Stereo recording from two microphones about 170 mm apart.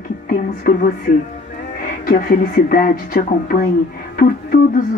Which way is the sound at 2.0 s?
60° left (ahead or behind).